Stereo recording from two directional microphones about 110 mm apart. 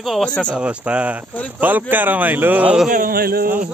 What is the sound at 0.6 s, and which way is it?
Speech, 10° right (ahead or behind).